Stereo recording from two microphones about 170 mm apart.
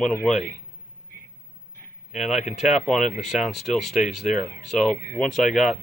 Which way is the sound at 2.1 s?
Centre (ahead or behind).